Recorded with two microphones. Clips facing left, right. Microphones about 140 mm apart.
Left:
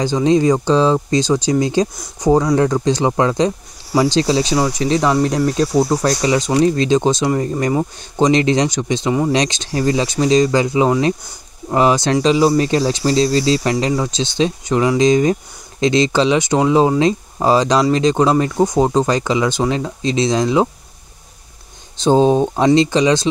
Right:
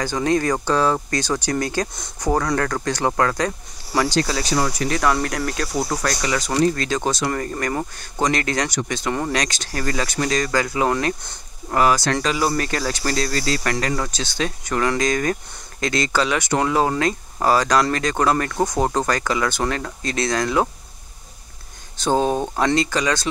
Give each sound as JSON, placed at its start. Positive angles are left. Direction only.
{"t": 0.0, "sound": "speech", "side_deg": 20}
{"t": 5.2, "sound": "speech", "side_deg": 5}
{"t": 5.6, "sound": "speech", "side_deg": 25}
{"t": 21.9, "sound": "speech", "side_deg": 20}